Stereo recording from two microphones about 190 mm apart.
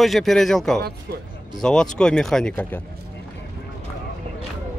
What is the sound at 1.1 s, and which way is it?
Speech, 55° right (ahead or behind).